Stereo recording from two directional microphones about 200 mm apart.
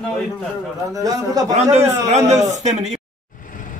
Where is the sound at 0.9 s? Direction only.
20° right (ahead or behind).